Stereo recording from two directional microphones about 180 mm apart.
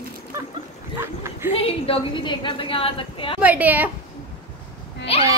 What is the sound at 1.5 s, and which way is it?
A woman's voice, 35° left (ahead or behind).